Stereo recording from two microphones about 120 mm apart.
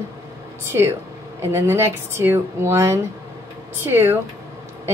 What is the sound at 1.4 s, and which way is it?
Speech, 20° right (ahead or behind).